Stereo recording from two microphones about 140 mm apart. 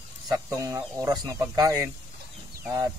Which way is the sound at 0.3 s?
25° right (ahead or behind).